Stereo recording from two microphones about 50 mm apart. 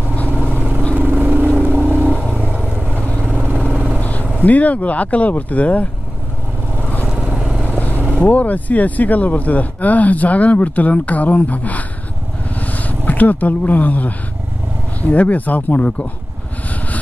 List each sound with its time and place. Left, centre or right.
0.3 s vehicle: right
3.0 s vehicle: left
3.3 s vehicle: right
4.0 s vehicle: left
4.4 s speech: left
7.1 s vehicle: right
7.7 s vehicle: left
8.2 s speech: left